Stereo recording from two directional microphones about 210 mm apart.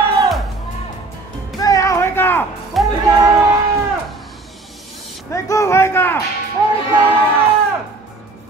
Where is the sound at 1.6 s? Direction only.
15° left (ahead or behind).